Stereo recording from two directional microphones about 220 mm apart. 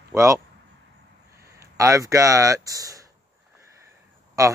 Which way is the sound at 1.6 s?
15° right (ahead or behind).